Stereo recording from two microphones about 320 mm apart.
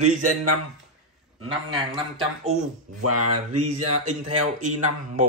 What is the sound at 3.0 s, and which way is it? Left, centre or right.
Speech, right.